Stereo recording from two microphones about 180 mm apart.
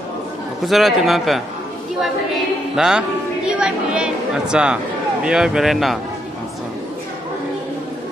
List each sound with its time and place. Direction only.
0.7 s a woman's voice: centre (ahead or behind)